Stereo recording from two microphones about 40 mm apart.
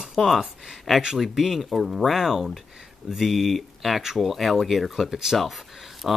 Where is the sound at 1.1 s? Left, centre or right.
Centre.